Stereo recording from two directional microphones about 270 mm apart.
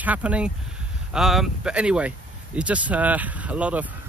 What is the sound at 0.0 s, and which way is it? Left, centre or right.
Speech, centre.